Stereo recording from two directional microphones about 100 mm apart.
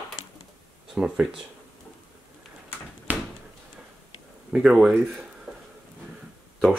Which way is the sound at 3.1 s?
15° right (ahead or behind).